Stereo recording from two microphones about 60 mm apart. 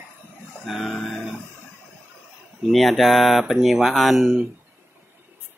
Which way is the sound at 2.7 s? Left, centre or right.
Centre.